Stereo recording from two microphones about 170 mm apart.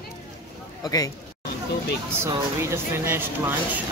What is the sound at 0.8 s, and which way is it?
Speech, 20° left (ahead or behind).